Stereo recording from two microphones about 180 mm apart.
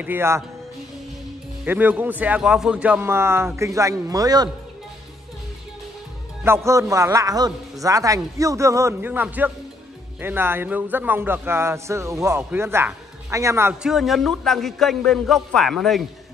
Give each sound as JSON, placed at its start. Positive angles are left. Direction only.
{"t": 0.0, "sound": "speech", "side_deg": -10}
{"t": 1.6, "sound": "speech", "side_deg": -10}
{"t": 6.4, "sound": "speech", "side_deg": -15}
{"t": 13.8, "sound": "a man's voice", "side_deg": 0}